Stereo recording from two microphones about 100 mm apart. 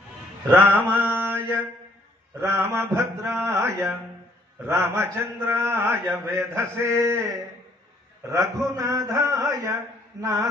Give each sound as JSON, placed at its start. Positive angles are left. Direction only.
{"t": 0.5, "sound": "mantra", "side_deg": -20}
{"t": 2.3, "sound": "a man's voice", "side_deg": -25}